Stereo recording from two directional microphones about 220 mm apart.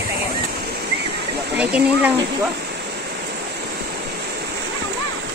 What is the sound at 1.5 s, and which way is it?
Speech, 5° right (ahead or behind).